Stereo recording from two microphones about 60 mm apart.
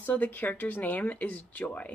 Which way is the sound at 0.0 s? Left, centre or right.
Left.